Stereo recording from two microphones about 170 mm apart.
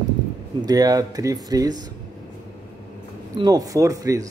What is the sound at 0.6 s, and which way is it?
A man's voice, 20° right (ahead or behind).